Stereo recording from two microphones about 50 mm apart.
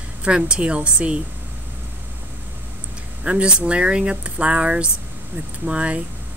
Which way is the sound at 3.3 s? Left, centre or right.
Right.